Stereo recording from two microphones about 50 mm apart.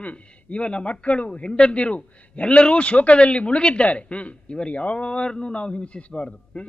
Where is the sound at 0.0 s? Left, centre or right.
Left.